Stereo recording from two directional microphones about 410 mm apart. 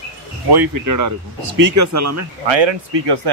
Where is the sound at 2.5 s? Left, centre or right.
Right.